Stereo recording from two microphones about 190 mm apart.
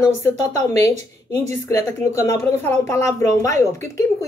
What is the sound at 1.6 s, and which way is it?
A woman's voice, 10° left (ahead or behind).